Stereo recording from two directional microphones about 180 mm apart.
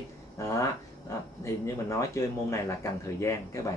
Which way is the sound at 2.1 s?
15° left (ahead or behind).